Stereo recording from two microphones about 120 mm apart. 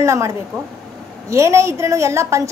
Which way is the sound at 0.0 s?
25° right (ahead or behind).